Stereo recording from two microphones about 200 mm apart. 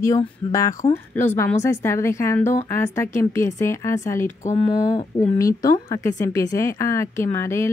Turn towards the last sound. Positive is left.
turn(degrees=15)  # may be behind; listen again after turning